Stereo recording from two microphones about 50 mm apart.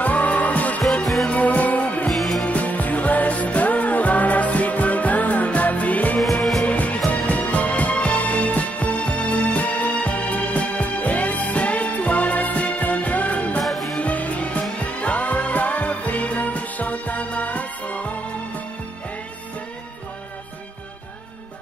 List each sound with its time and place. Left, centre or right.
0.0 s music: left
0.8 s music: centre
1.3 s music: left
2.0 s music: centre
2.4 s music: left
6.2 s music: centre
6.6 s music: left
13.6 s music: centre
13.9 s music: left